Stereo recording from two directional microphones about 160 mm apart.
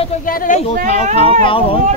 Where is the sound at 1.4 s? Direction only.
35° left (ahead or behind).